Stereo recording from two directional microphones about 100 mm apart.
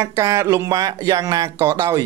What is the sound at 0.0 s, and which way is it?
Speech, 30° right (ahead or behind).